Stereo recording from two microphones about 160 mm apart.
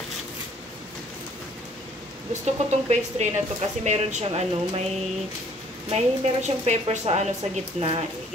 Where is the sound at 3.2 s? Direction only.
45° right (ahead or behind).